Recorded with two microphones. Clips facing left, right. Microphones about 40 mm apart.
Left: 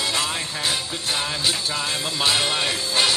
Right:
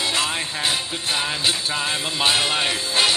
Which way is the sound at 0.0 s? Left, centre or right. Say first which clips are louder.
Right 2 dB; right.